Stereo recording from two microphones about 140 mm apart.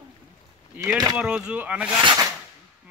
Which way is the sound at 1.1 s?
5° right (ahead or behind).